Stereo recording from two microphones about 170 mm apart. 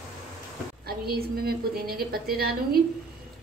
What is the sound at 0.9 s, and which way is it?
A woman's voice, 65° right (ahead or behind).